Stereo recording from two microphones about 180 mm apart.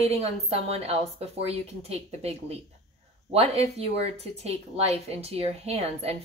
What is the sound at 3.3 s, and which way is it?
Speech, 35° right (ahead or behind).